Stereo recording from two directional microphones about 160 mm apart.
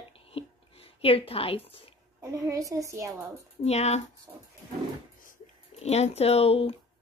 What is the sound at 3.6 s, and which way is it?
Speech, 45° left (ahead or behind).